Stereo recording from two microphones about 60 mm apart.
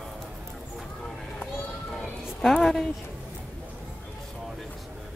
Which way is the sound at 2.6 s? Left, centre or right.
Centre.